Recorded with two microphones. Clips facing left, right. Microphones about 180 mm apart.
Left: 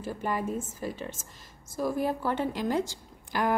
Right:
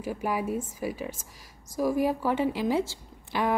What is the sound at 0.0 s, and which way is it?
A woman's voice, 10° right (ahead or behind).